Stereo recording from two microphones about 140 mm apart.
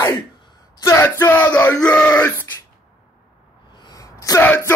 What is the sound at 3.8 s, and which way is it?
Sneeze, 25° left (ahead or behind).